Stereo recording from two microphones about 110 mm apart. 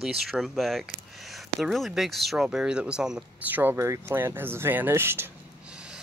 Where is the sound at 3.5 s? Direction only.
20° right (ahead or behind).